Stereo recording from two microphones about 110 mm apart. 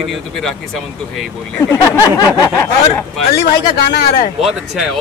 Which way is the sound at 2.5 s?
15° left (ahead or behind).